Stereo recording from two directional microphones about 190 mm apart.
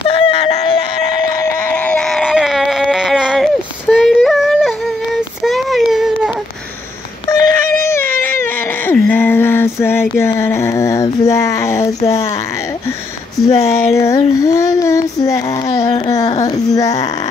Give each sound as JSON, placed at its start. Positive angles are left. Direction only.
{"t": 0.0, "sound": "a sound", "side_deg": 30}
{"t": 1.4, "sound": "baby cry", "side_deg": 10}
{"t": 3.9, "sound": "yodeling", "side_deg": 0}
{"t": 5.4, "sound": "child singing", "side_deg": 0}
{"t": 7.2, "sound": "baby cry", "side_deg": 15}
{"t": 10.1, "sound": "a sound", "side_deg": 15}
{"t": 13.6, "sound": "child singing", "side_deg": 15}